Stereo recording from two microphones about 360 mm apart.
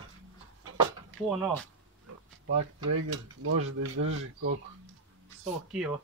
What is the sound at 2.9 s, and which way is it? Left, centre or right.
Speech, right.